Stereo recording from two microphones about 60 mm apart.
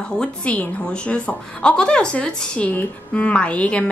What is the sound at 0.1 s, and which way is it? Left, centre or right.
A woman's voice, centre.